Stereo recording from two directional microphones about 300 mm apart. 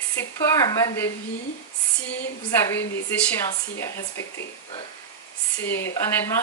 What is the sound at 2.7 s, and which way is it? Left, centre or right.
Speech, centre.